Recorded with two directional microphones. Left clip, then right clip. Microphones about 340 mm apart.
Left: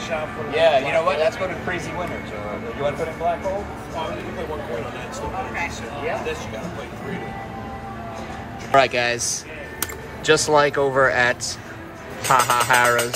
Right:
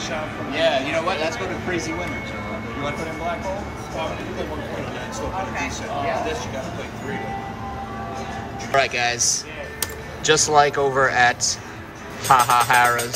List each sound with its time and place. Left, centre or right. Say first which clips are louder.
0.6 s speech: left 3 dB; centre
8.7 s speech: left 2 dB; centre